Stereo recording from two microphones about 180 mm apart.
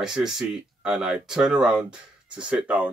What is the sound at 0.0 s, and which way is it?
Speech, 5° right (ahead or behind).